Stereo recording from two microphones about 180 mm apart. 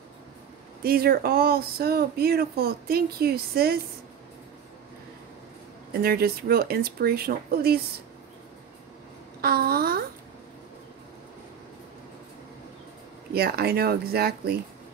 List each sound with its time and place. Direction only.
0.8 s speech: 60° right (ahead or behind)
6.0 s speech: 60° right (ahead or behind)
9.4 s speech: 60° right (ahead or behind)
13.3 s speech: 60° right (ahead or behind)